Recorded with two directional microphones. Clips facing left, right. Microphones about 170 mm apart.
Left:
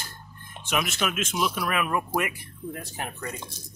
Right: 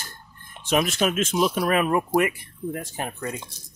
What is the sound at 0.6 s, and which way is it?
Speech, 35° right (ahead or behind).